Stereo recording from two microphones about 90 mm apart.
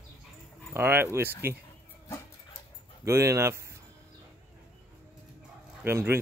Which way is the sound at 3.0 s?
35° right (ahead or behind).